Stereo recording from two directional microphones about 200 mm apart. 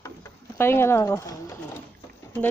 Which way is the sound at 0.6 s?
10° left (ahead or behind).